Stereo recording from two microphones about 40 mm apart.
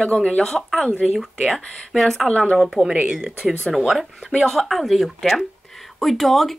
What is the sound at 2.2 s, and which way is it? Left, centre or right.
Speech, left.